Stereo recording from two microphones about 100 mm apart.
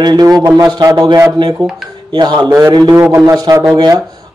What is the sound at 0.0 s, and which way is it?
Speech, 45° right (ahead or behind).